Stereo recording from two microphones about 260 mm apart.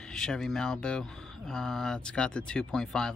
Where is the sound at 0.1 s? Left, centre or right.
Centre.